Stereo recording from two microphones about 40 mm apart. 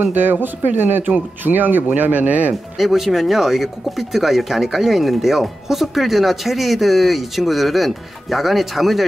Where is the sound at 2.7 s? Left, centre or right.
Centre.